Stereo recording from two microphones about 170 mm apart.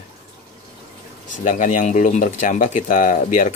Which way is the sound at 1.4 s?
50° left (ahead or behind).